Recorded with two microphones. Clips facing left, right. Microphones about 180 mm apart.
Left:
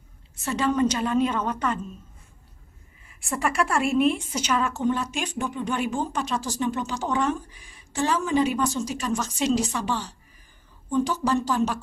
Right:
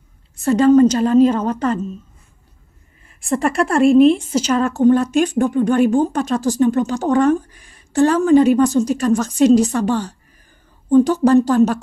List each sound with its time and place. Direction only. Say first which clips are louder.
0.4 s a woman's voice: right 12 dB; 40° right (ahead or behind)
3.3 s a woman's voice: right 8 dB; 35° right (ahead or behind); by 11.8 s 50° right (ahead or behind)